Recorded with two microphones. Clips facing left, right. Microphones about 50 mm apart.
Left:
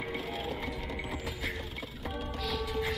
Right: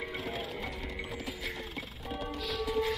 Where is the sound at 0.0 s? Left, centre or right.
Centre.